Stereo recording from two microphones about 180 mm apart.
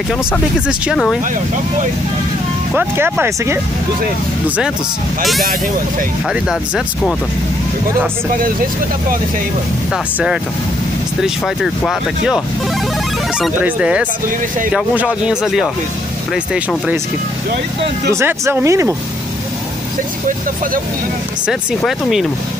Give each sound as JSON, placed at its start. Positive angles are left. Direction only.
{"t": 0.7, "sound": "speech", "side_deg": 0}
{"t": 2.7, "sound": "speech", "side_deg": -10}
{"t": 5.2, "sound": "speech", "side_deg": 0}
{"t": 6.5, "sound": "speech", "side_deg": -5}
{"t": 10.1, "sound": "speech", "side_deg": -5}
{"t": 13.4, "sound": "speech", "side_deg": -10}
{"t": 18.1, "sound": "speech", "side_deg": -15}
{"t": 21.5, "sound": "speech", "side_deg": 0}